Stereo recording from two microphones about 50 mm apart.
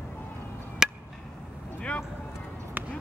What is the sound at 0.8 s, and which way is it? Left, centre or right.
Gobble, centre.